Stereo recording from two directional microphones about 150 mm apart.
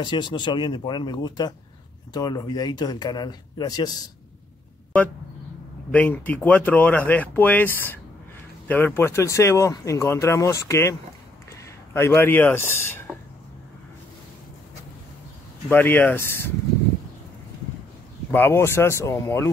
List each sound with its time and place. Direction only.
0.0 s speech: 30° left (ahead or behind)
5.9 s speech: 10° left (ahead or behind)
15.7 s speech: 10° left (ahead or behind)
18.3 s speech: 15° left (ahead or behind)